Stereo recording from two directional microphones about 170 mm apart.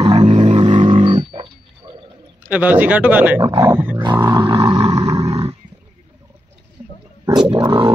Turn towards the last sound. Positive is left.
turn(degrees=-30)  # may be behind; listen again after turning